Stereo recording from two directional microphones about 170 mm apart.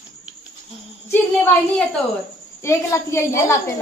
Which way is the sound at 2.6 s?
15° left (ahead or behind).